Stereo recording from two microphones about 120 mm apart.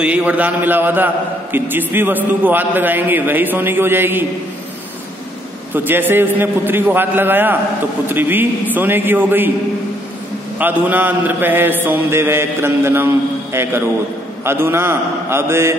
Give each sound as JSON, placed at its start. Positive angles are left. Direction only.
{"t": 0.0, "sound": "a man's voice", "side_deg": -10}
{"t": 5.7, "sound": "a man's voice", "side_deg": -15}
{"t": 10.6, "sound": "a man's voice", "side_deg": -15}